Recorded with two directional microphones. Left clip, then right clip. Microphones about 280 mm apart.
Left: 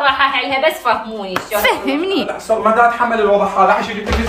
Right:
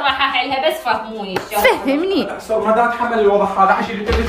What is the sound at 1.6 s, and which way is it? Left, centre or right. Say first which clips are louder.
Speech: right 3 dB; centre.